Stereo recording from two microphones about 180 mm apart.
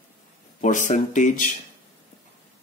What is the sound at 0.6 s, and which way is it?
Speech, 45° left (ahead or behind).